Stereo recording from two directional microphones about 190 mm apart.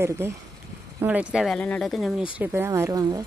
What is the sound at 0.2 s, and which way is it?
Speech, 15° right (ahead or behind).